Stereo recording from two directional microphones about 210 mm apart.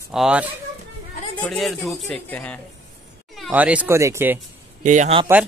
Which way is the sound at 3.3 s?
5° right (ahead or behind).